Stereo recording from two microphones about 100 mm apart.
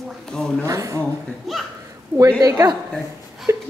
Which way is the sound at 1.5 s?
Centre (ahead or behind).